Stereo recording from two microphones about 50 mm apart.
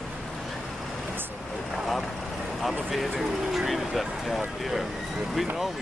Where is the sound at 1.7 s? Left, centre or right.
Centre.